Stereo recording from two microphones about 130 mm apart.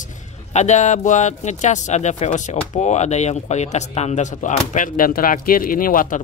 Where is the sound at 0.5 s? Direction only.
60° left (ahead or behind).